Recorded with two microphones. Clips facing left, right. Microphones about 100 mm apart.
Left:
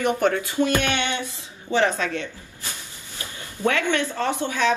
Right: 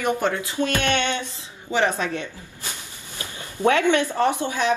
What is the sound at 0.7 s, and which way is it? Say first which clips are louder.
Music: even; 15° left (ahead or behind).